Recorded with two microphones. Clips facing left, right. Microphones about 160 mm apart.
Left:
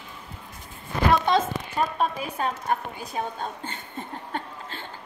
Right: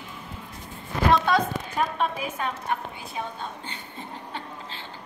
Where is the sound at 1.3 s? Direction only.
20° left (ahead or behind).